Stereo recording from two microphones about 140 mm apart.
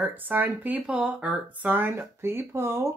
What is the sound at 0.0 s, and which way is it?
Speech, 15° right (ahead or behind).